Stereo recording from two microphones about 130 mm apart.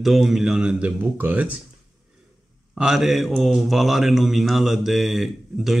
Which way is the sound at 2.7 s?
5° right (ahead or behind).